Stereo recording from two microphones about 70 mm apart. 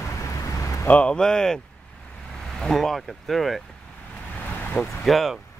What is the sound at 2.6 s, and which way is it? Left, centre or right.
Speech, centre.